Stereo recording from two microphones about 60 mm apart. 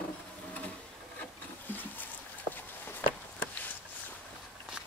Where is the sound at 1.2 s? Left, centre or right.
Left.